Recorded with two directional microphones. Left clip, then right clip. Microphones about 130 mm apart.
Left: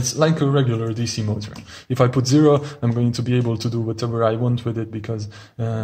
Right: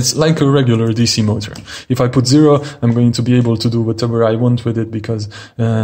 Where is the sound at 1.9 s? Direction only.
15° right (ahead or behind).